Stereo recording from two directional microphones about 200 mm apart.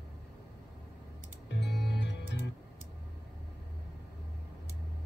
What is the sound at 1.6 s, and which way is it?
Music, 55° left (ahead or behind).